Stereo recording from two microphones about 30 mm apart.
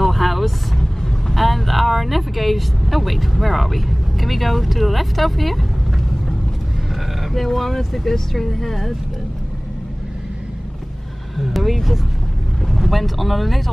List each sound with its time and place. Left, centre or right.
0.0 s vehicle: centre
0.7 s vehicle: centre
1.3 s speech: centre
7.3 s speech: centre
11.3 s speech: centre